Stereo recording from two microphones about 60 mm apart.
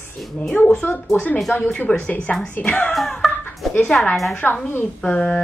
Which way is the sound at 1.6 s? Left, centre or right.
Left.